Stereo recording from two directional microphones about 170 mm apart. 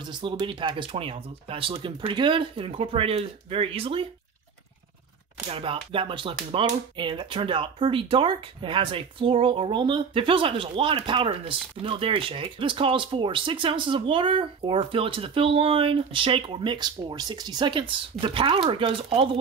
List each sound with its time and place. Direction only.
0.0 s speech: 25° right (ahead or behind)
5.5 s speech: 35° right (ahead or behind)